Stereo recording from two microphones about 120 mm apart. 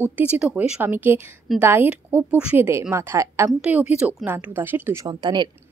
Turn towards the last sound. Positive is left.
turn(degrees=-40)  # may be behind; listen again after turning